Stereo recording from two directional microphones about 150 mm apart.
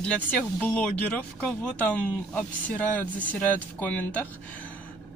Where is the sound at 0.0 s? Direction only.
10° left (ahead or behind).